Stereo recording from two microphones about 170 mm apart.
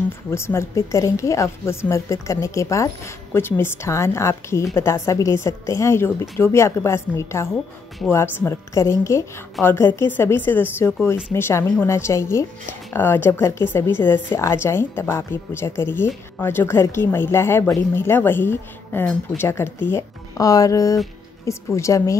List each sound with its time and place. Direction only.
0.3 s a woman's voice: 15° left (ahead or behind)